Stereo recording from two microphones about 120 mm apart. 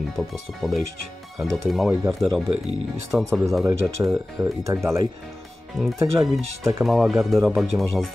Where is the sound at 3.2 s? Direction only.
Centre (ahead or behind).